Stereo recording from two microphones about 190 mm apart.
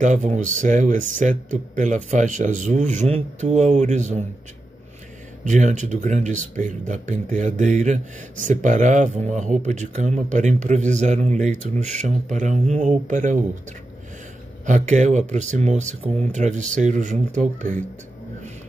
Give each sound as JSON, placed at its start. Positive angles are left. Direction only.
{"t": 0.0, "sound": "speech", "side_deg": -40}
{"t": 5.4, "sound": "speech", "side_deg": -40}
{"t": 14.7, "sound": "speech", "side_deg": -40}